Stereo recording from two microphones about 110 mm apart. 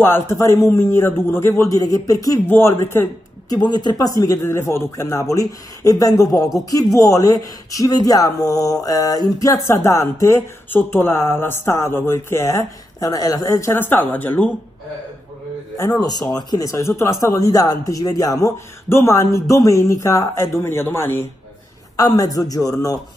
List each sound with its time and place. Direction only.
0.0 s speech: 20° left (ahead or behind)
1.6 s a woman's voice: 30° left (ahead or behind)
3.4 s a woman's voice: 40° left (ahead or behind); by 14.5 s 15° left (ahead or behind)
16.0 s speech: 35° left (ahead or behind); by 21.3 s 20° left (ahead or behind)
21.9 s a woman's voice: 35° left (ahead or behind)